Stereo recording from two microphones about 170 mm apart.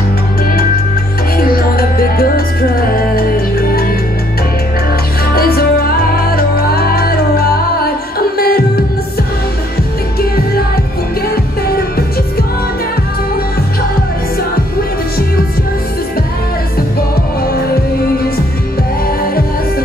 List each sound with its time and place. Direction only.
1.4 s music: 60° left (ahead or behind)
5.3 s music: 65° left (ahead or behind)